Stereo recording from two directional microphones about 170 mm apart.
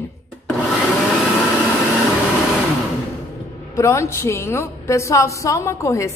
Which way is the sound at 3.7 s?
15° left (ahead or behind).